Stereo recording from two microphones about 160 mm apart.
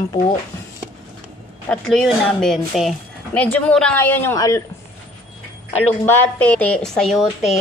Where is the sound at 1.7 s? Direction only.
Centre (ahead or behind).